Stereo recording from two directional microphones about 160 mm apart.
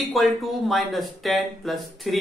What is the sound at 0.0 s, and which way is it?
Speech, centre (ahead or behind).